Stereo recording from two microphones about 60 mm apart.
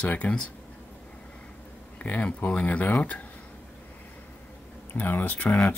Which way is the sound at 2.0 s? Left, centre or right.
Left.